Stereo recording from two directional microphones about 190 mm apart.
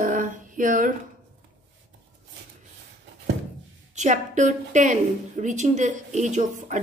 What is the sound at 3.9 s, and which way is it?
A woman's voice, 40° right (ahead or behind).